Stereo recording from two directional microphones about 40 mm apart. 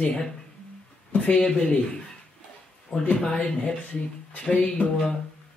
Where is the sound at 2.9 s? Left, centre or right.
Left.